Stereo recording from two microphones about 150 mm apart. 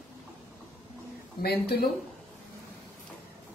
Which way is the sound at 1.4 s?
90° left.